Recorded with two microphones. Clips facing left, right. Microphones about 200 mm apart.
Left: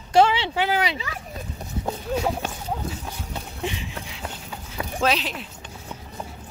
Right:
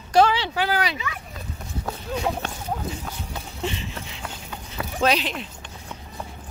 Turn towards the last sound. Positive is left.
turn(degrees=5)  # may be behind; listen again after turning